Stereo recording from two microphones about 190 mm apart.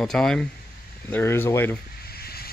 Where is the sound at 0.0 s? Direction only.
5° left (ahead or behind).